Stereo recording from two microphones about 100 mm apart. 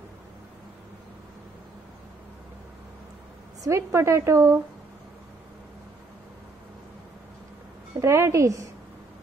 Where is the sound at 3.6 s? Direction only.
30° right (ahead or behind).